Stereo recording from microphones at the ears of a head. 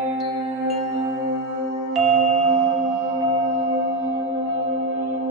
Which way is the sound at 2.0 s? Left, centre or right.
Right.